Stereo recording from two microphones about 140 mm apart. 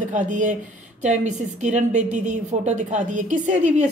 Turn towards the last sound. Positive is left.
turn(degrees=-60)  # may be behind; listen again after turning